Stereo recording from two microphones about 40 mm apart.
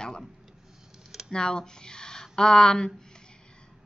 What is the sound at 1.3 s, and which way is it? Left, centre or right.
Speech, centre.